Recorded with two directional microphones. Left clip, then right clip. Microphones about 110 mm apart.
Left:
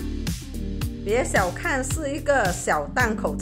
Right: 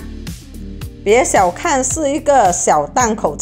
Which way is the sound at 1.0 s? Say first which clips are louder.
Right 11 dB; 90° right.